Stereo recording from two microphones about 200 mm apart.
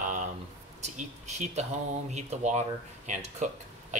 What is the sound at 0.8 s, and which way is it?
Speech, 35° right (ahead or behind).